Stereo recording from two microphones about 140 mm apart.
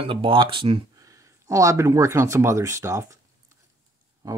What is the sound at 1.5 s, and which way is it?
Speech, 20° right (ahead or behind).